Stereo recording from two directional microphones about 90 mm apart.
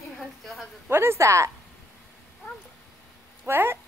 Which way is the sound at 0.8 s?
25° right (ahead or behind).